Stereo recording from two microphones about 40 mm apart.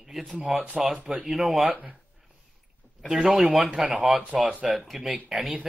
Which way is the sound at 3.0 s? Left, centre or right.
Centre.